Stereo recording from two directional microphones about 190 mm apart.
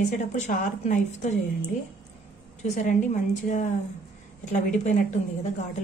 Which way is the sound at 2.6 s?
40° left (ahead or behind).